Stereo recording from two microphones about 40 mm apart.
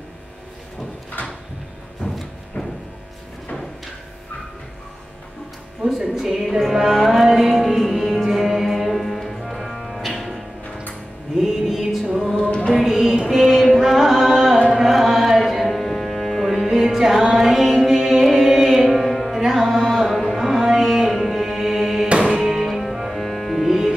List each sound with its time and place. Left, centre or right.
1.2 s a sound: left
2.1 s music: centre
6.1 s music: centre
12.4 s music: left
12.7 s a sound: centre
13.2 s music: centre
20.1 s music: centre
20.3 s music: centre
20.8 s music: centre